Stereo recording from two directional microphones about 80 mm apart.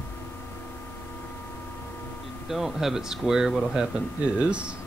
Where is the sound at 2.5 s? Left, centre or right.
Centre.